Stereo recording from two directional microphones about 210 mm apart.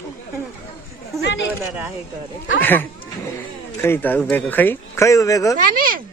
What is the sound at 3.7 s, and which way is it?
Speech, 10° left (ahead or behind).